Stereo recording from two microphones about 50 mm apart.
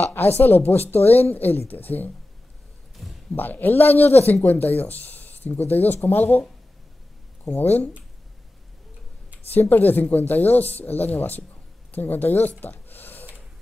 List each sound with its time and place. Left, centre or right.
0.0 s speech: left
3.0 s a sound: centre
3.3 s speech: left
7.4 s speech: left
9.5 s speech: left
11.9 s a sound: left